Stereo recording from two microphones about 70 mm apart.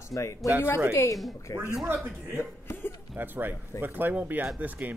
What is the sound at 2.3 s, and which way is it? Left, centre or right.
Cough, left.